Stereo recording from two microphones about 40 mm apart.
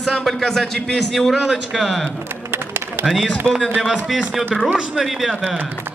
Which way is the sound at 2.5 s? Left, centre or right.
Right.